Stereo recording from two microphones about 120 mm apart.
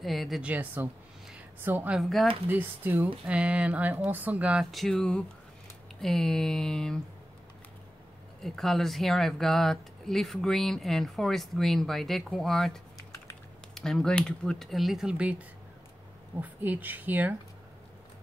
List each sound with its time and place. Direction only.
0.0 s speech: centre (ahead or behind)
0.4 s speech: 15° right (ahead or behind)
2.0 s speech: centre (ahead or behind)
2.4 s speech: 15° right (ahead or behind)
4.6 s speech: centre (ahead or behind)
8.4 s speech: centre (ahead or behind); by 17.4 s 15° right (ahead or behind)